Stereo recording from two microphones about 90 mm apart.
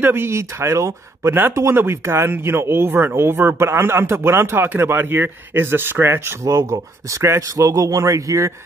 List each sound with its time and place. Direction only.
0.0 s speech: 25° right (ahead or behind)